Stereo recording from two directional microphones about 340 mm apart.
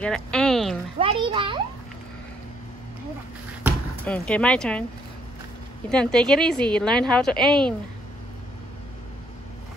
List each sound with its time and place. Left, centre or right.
0.0 s speech: centre
0.9 s a child's voice: centre
4.0 s a woman's voice: centre
5.9 s a woman's voice: centre